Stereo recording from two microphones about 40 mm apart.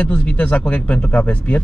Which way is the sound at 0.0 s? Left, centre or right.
Left.